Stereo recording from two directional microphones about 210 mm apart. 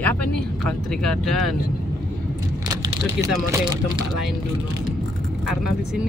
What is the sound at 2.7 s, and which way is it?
Vehicle, 15° right (ahead or behind).